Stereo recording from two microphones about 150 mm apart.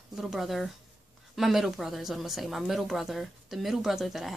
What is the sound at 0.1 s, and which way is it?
A woman's voice, centre (ahead or behind).